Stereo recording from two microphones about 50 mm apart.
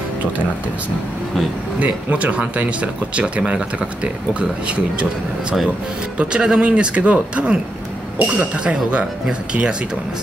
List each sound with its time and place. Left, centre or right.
1.8 s speech: right
6.1 s speech: centre